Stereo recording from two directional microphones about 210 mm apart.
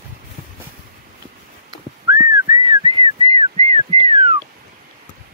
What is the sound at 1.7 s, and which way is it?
Whistling, 20° right (ahead or behind).